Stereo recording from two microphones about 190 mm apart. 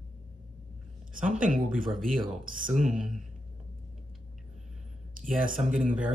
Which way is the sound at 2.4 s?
45° right (ahead or behind).